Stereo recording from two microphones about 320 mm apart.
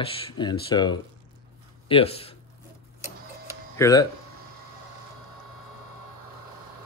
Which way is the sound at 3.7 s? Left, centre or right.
Centre.